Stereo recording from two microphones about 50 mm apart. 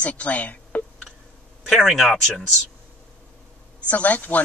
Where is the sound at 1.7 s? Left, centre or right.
Centre.